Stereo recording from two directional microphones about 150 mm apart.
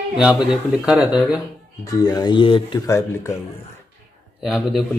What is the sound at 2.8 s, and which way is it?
Speech, 20° left (ahead or behind).